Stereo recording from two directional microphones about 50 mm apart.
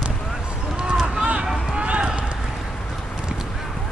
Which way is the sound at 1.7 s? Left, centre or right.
Right.